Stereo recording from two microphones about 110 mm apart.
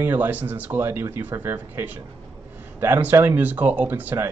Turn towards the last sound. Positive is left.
turn(degrees=-15)  # may be behind; listen again after turning